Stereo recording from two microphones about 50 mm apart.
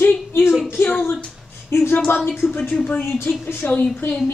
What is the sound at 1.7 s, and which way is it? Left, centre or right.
A woman's voice, left.